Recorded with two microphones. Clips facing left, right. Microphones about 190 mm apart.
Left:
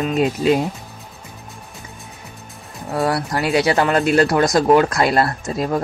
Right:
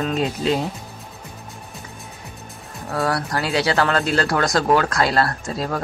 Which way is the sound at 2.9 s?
20° left (ahead or behind).